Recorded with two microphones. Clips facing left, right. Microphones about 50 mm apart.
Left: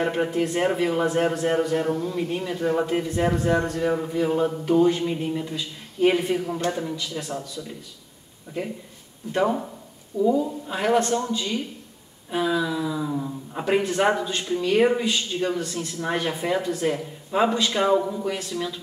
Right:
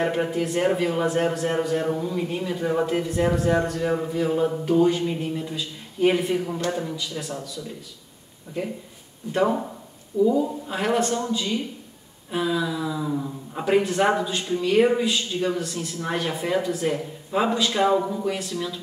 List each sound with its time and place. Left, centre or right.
0.0 s a man's voice: centre
2.9 s speech: centre
5.5 s speech: centre
9.3 s speech: centre